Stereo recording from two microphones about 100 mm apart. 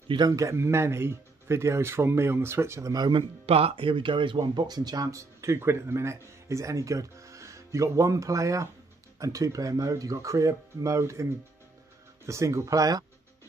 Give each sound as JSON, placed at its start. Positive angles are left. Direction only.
{"t": 0.3, "sound": "speech", "side_deg": -30}
{"t": 3.4, "sound": "speech", "side_deg": -80}
{"t": 12.3, "sound": "speech", "side_deg": -30}